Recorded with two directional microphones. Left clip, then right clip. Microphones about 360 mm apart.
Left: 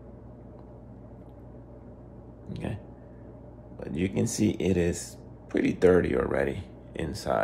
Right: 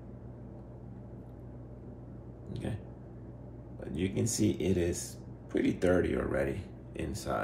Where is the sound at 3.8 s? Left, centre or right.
Left.